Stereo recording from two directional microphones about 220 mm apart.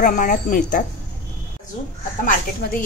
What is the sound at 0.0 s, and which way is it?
Speech, 35° left (ahead or behind).